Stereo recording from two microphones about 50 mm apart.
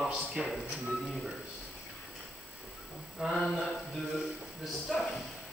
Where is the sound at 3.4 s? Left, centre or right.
Left.